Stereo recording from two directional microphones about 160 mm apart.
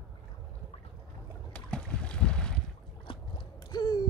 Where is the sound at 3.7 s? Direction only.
25° left (ahead or behind).